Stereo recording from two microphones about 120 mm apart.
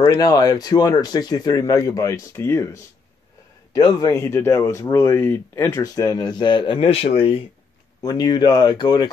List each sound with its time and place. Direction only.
0.0 s speech: 30° left (ahead or behind)
3.7 s speech: 35° left (ahead or behind); by 7.4 s 50° left (ahead or behind)
8.0 s speech: 35° left (ahead or behind)